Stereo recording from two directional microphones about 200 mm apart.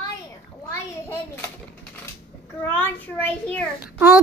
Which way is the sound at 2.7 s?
10° left (ahead or behind).